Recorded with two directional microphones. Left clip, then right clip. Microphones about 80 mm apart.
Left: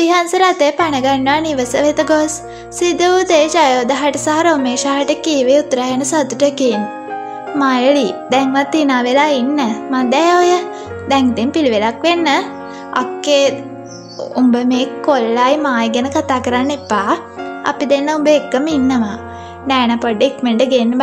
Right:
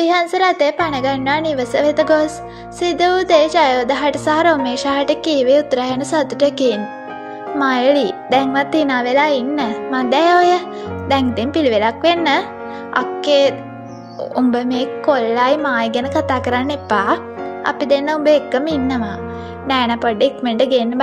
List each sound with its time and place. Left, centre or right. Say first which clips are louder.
0.0 s a woman's voice: left 2 dB; right
11.1 s a woman's voice: left 3 dB; right
12.9 s music: left 1 dB; right
14.3 s a woman's voice: left 3 dB; right
19.7 s a woman's voice: left 2 dB; right